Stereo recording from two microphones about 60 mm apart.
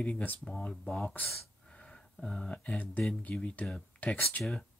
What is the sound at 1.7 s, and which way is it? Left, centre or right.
Speech, centre.